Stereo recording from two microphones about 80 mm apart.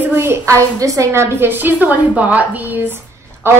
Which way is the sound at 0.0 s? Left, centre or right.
Right.